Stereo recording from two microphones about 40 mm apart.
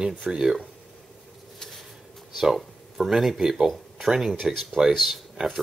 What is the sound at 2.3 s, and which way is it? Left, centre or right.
Speech, centre.